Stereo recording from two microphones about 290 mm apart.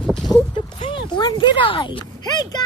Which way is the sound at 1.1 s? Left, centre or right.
Centre.